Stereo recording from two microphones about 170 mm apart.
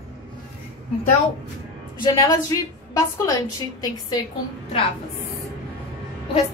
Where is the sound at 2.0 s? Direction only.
20° left (ahead or behind).